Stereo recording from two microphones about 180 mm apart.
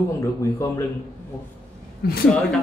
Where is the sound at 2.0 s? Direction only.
60° left (ahead or behind).